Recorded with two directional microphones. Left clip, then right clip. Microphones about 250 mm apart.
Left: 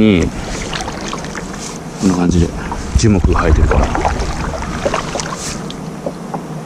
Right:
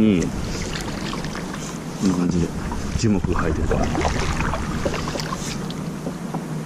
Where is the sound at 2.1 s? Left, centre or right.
Centre.